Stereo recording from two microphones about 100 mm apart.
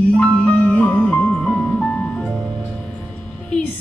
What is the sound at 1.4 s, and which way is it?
Music, 5° left (ahead or behind).